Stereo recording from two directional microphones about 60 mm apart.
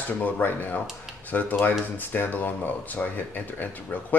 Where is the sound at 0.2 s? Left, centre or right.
Left.